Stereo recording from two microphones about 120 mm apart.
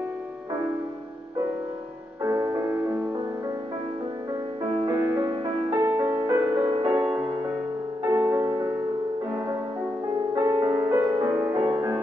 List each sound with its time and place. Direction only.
2.2 s music: 25° right (ahead or behind)
5.2 s music: 35° right (ahead or behind)
6.9 s music: 15° right (ahead or behind)
10.3 s music: 35° right (ahead or behind)